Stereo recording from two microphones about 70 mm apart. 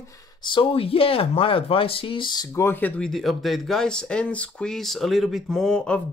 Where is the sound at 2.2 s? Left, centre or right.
Left.